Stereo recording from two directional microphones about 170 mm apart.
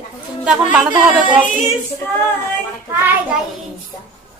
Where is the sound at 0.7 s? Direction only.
5° right (ahead or behind).